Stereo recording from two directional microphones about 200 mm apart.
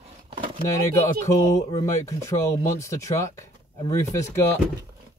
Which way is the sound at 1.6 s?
15° left (ahead or behind).